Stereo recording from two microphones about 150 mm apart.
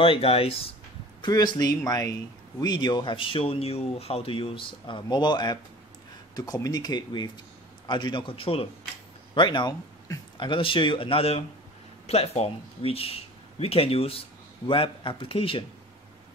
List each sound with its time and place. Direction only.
0.0 s speech: 40° left (ahead or behind)
1.2 s speech: 30° left (ahead or behind)